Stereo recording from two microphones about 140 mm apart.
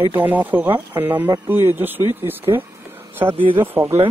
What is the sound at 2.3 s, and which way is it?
Speech, 15° right (ahead or behind).